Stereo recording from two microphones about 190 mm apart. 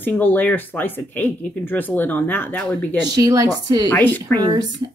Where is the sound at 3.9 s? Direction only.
10° left (ahead or behind).